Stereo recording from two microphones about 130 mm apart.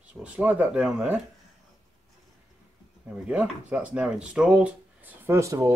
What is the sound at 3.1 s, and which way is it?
Speech, 10° right (ahead or behind).